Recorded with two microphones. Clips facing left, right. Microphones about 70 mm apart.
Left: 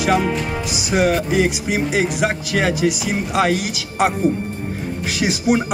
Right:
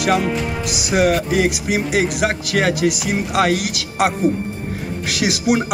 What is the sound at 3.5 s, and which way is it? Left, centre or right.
Speech, right.